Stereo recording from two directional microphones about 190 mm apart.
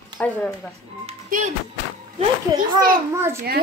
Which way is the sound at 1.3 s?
45° right (ahead or behind).